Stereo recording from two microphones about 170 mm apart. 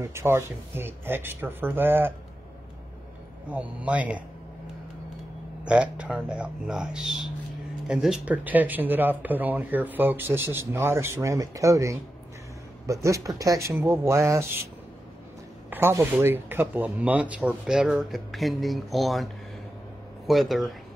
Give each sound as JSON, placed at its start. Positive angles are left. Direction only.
{"t": 0.0, "sound": "speech", "side_deg": -15}
{"t": 3.4, "sound": "speech", "side_deg": -10}
{"t": 5.7, "sound": "speech", "side_deg": -5}
{"t": 15.7, "sound": "speech", "side_deg": -15}